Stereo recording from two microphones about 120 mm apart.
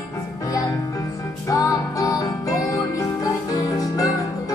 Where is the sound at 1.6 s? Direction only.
30° left (ahead or behind).